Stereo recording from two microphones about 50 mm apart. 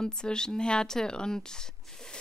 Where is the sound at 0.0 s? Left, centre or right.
Centre.